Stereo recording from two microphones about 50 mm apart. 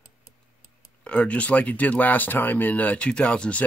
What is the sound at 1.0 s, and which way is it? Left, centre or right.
Speech, left.